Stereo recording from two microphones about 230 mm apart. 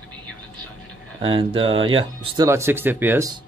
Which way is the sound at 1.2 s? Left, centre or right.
Right.